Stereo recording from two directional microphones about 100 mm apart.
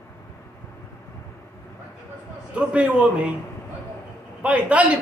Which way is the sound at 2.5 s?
15° right (ahead or behind).